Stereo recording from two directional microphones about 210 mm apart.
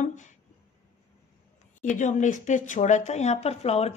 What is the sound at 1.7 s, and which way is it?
Speech, 35° left (ahead or behind).